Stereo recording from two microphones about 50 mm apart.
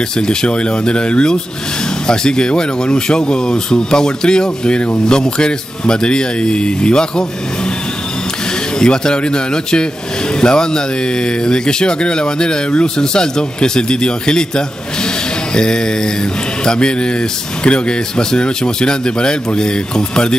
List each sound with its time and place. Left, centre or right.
0.3 s speech: centre
8.7 s speech: centre